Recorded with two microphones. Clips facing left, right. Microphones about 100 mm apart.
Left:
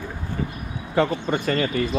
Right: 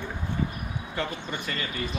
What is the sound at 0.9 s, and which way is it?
Speech, 40° left (ahead or behind).